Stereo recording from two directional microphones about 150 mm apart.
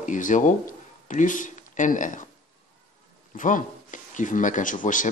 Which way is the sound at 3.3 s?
60° left (ahead or behind).